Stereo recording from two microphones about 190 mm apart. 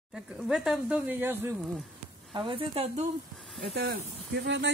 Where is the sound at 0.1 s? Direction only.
5° right (ahead or behind).